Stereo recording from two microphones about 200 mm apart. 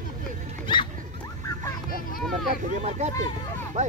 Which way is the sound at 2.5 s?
35° right (ahead or behind).